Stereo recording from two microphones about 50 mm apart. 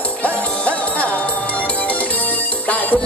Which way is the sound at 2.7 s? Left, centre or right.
Left.